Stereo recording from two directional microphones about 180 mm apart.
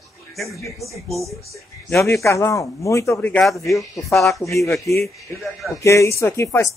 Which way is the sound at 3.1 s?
5° left (ahead or behind).